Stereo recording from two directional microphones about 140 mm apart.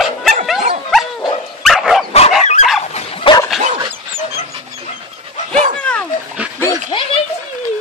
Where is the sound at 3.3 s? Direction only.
40° left (ahead or behind).